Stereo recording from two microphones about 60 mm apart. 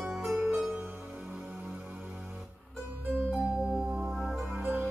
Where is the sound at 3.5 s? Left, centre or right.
Centre.